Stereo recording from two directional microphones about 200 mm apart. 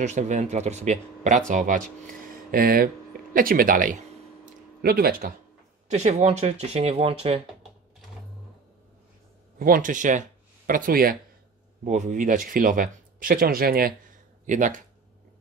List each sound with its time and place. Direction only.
0.0 s speech: 35° right (ahead or behind)
5.9 s speech: 35° right (ahead or behind)
9.6 s speech: 45° right (ahead or behind)